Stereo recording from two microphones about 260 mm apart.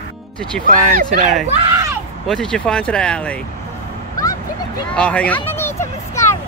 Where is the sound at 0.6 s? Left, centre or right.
Right.